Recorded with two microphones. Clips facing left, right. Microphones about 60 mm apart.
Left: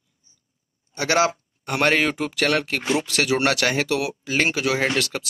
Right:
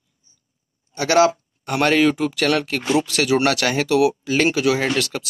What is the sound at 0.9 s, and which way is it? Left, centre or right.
Speech, centre.